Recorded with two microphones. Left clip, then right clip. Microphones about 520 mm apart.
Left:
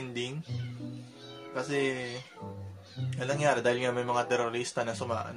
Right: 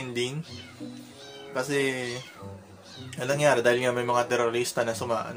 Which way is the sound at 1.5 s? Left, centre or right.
Left.